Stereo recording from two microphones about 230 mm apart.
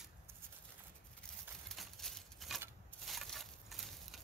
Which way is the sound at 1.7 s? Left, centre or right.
Centre.